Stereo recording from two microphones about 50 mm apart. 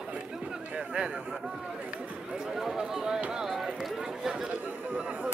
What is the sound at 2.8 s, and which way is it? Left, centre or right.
Speech, centre.